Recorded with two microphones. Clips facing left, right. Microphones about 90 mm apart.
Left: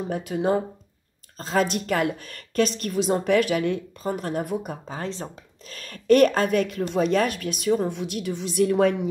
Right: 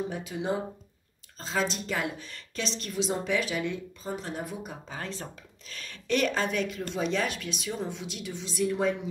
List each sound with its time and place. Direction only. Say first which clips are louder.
0.1 s a woman's voice: left 8 dB; 55° left (ahead or behind)
4.8 s speech: left 6 dB; 35° left (ahead or behind); by 9.1 s 60° left (ahead or behind)